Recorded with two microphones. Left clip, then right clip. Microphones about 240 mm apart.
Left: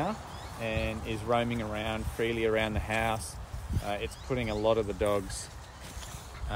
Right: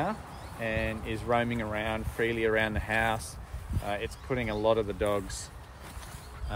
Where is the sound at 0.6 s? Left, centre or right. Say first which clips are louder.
Right 2 dB; centre.